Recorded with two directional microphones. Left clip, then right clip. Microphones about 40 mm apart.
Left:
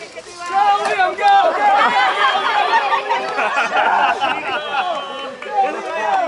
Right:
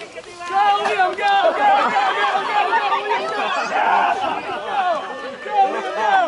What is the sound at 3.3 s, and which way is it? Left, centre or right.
Chatter, right.